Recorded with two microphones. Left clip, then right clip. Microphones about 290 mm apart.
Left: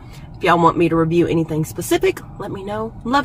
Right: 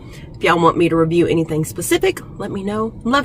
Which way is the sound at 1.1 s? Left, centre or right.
Centre.